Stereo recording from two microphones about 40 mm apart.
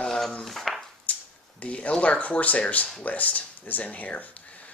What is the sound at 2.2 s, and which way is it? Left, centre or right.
Speech, left.